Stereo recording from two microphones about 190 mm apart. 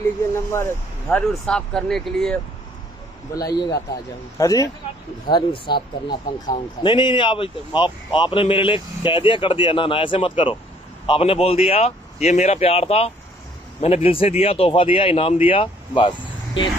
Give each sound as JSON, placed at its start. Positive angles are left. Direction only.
{"t": 0.3, "sound": "speech", "side_deg": 15}
{"t": 3.3, "sound": "a man's voice", "side_deg": 20}